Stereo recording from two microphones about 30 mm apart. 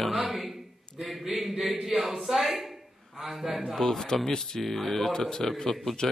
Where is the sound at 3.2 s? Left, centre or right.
Centre.